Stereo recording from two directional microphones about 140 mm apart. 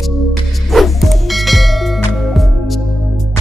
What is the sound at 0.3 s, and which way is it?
Music, centre (ahead or behind).